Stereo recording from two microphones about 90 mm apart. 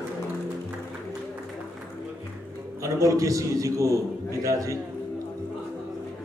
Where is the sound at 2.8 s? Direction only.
35° right (ahead or behind).